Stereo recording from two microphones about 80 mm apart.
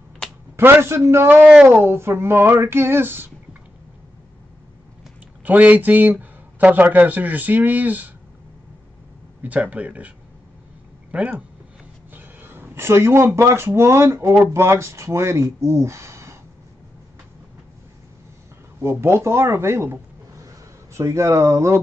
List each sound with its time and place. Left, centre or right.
0.6 s a sound: right
5.4 s speech: right
9.4 s speech: centre; by 16.3 s right
18.8 s speech: right